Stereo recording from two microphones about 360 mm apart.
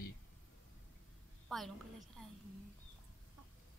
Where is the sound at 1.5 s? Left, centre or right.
Centre.